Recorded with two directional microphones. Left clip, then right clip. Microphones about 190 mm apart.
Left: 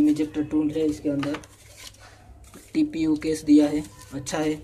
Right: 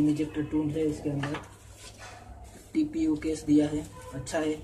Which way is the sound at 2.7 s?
35° left (ahead or behind).